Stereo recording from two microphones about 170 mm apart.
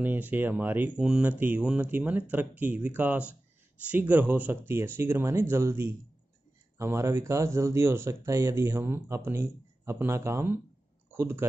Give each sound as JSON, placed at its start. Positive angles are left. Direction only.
{"t": 0.0, "sound": "speech", "side_deg": -10}